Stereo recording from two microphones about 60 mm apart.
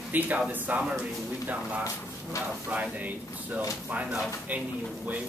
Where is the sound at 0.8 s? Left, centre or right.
Centre.